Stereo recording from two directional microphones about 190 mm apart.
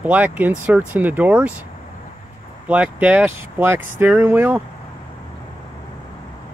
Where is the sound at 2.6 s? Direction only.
5° right (ahead or behind).